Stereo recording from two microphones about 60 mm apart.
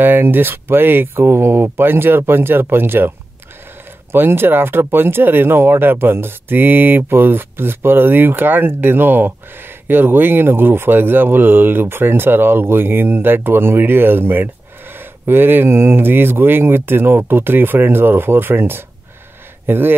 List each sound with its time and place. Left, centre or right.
0.0 s speech: right